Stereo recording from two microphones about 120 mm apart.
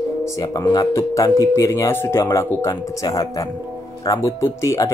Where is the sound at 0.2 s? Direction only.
30° left (ahead or behind).